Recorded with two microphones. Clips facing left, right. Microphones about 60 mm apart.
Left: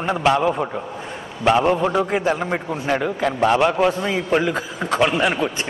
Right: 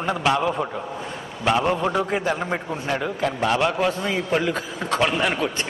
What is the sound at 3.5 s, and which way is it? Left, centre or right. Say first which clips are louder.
A man's voice: left 5 dB; centre.